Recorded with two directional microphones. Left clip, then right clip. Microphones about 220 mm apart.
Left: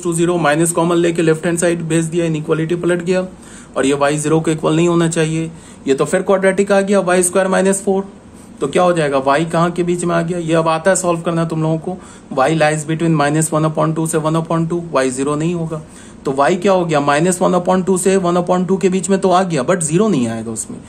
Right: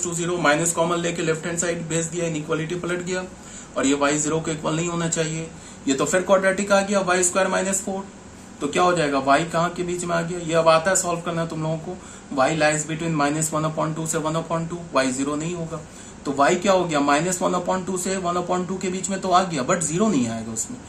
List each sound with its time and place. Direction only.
0.0 s speech: 50° left (ahead or behind)
5.9 s speech: 40° left (ahead or behind)